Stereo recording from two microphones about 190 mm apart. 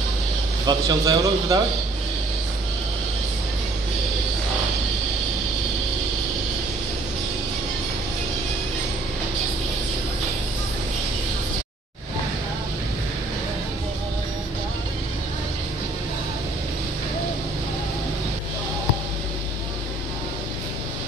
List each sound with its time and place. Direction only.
0.7 s a man's voice: 20° right (ahead or behind)